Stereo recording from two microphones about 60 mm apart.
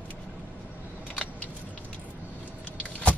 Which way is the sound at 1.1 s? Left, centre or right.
Centre.